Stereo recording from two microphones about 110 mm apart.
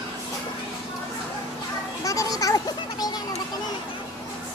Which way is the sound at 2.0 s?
30° left (ahead or behind).